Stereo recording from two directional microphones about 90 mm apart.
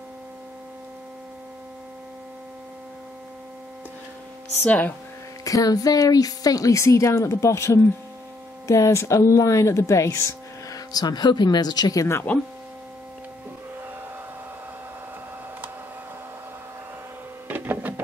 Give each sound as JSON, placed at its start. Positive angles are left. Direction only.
{"t": 4.6, "sound": "speech", "side_deg": 20}
{"t": 5.4, "sound": "speech", "side_deg": 40}
{"t": 17.5, "sound": "printer", "side_deg": -20}